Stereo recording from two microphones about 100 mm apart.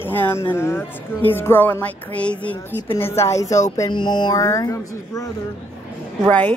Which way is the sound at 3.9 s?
50° left (ahead or behind).